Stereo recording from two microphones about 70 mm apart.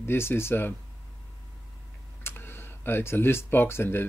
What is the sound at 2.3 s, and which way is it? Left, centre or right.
Speech, left.